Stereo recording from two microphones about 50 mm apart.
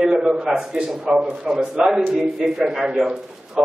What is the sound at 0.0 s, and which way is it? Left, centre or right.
A man's voice, centre.